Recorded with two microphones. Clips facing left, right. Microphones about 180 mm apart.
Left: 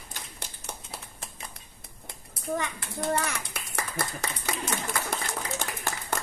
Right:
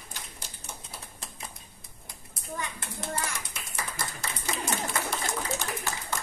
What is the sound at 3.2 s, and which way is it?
Clapping, 70° left (ahead or behind).